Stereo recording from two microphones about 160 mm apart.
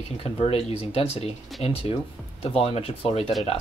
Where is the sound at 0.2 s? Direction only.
35° left (ahead or behind).